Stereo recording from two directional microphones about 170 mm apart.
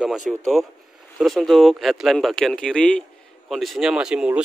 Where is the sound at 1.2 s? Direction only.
Centre (ahead or behind).